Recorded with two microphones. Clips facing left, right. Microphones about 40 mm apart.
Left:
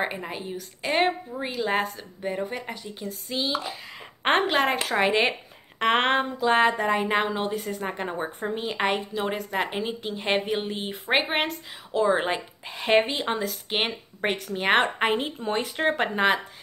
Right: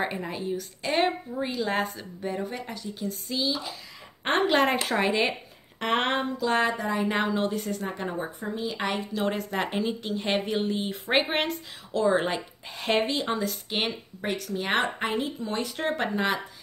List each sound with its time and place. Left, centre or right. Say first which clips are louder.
0.0 s speech: even; centre
2.6 s speech: right 1 dB; left
4.2 s speech: left 2 dB; left
4.5 s speech: even; centre
5.0 s speech: left 3 dB; left
7.1 s speech: left 1 dB; centre
7.8 s speech: left 2 dB; left
8.4 s a woman's voice: left 3 dB; left
9.1 s speech: even; centre
11.9 s speech: left 1 dB; left
14.2 s a woman's voice: left 4 dB; left
15.6 s speech: left 3 dB; left